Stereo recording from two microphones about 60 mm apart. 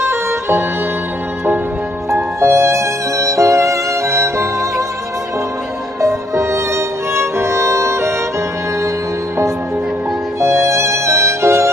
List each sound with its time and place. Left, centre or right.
0.0 s music: right
2.1 s music: right
5.9 s music: right
10.4 s music: right